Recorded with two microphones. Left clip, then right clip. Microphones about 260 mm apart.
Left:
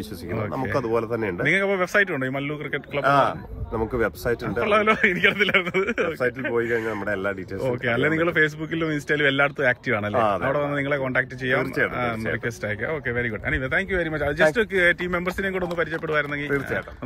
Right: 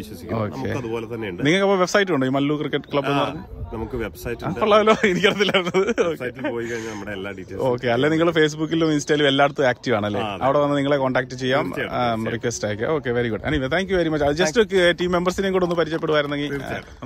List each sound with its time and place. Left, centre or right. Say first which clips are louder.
0.7 s speech: left 4 dB; centre
1.4 s speech: right 4 dB; centre
3.0 s speech: left 4 dB; centre
4.5 s speech: right 5 dB; centre
6.7 s speech: left 5 dB; centre
7.6 s speech: right 3 dB; centre